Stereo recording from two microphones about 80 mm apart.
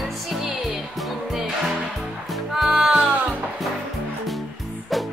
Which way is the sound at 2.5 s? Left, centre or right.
Centre.